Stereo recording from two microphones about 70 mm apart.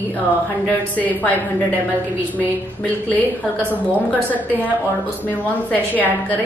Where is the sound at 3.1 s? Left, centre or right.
Left.